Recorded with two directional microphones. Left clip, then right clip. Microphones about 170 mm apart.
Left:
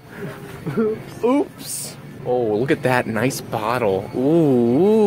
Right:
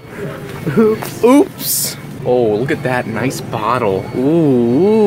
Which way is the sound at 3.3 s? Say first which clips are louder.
Right 5 dB; 25° left (ahead or behind).